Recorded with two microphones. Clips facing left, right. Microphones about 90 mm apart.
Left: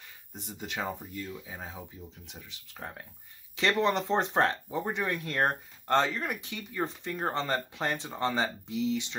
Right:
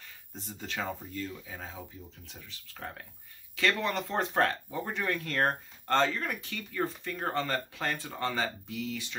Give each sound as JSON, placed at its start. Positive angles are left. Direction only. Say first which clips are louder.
{"t": 0.3, "sound": "speech", "louder": "left 1 dB", "side_deg": 15}